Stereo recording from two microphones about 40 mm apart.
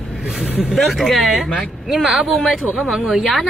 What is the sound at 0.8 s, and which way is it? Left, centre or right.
Speech, centre.